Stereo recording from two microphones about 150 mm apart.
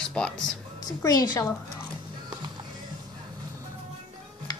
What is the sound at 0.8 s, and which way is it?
Speech, 25° left (ahead or behind).